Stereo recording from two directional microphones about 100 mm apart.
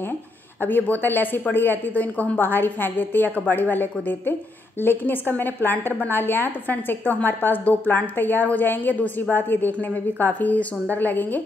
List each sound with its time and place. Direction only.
0.6 s a woman's voice: 20° left (ahead or behind)